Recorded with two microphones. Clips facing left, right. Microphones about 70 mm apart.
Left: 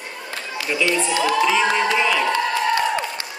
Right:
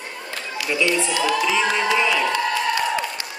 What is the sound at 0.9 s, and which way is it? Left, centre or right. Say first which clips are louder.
Speech: left 3 dB; left.